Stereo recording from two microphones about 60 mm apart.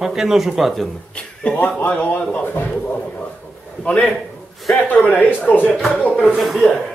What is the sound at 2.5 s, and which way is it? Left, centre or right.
Speech, left.